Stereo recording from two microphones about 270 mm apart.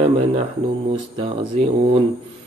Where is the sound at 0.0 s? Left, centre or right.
Right.